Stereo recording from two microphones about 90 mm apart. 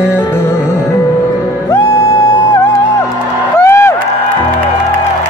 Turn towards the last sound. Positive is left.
turn(degrees=30)  # may be behind; listen again after turning